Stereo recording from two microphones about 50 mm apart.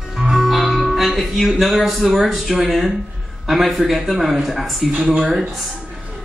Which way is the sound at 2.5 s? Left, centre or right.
Centre.